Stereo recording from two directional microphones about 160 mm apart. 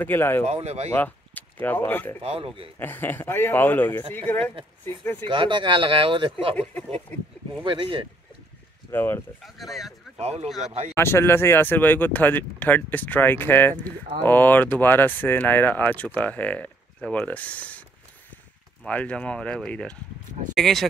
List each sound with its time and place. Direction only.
0.0 s speech: 15° left (ahead or behind)
0.5 s speech: 40° right (ahead or behind)
0.9 s speech: 10° left (ahead or behind)
2.2 s speech: 35° right (ahead or behind)
2.8 s speech: 15° left (ahead or behind)
5.2 s speech: 30° right (ahead or behind)
6.5 s speech: 10° left (ahead or behind)
7.6 s speech: 30° right (ahead or behind)
8.9 s speech: 15° left (ahead or behind)
9.4 s speech: centre (ahead or behind)
10.1 s speech: 40° right (ahead or behind)
11.0 s speech: 15° left (ahead or behind)
18.9 s speech: 10° left (ahead or behind)